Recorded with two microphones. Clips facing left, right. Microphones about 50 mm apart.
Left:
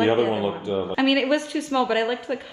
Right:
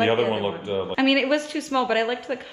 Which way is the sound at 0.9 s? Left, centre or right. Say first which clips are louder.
Even; centre.